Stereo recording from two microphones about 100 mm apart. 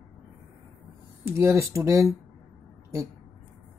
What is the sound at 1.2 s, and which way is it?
Speech, 25° right (ahead or behind).